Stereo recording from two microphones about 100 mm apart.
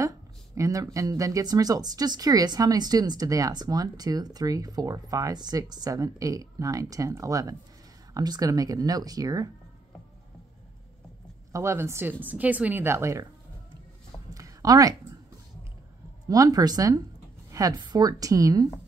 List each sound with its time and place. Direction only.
0.6 s speech: 35° right (ahead or behind)
11.5 s speech: 25° right (ahead or behind)
14.3 s a sound: 35° right (ahead or behind)
16.3 s speech: 40° right (ahead or behind)